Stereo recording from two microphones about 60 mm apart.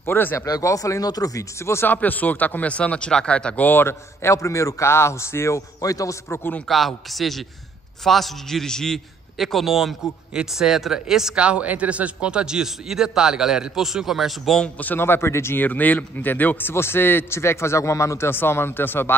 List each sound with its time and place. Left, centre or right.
0.0 s a man's voice: left
0.5 s speech: left
1.6 s a man's voice: left
1.9 s speech: left
3.6 s a man's voice: left
4.2 s a man's voice: left
5.8 s speech: left
6.7 s a man's voice: centre
11.4 s a man's voice: right; by 14.6 s centre
14.8 s a man's voice: left
15.6 s a man's voice: left